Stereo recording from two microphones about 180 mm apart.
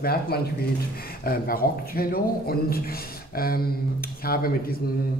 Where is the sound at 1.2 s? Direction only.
55° left (ahead or behind).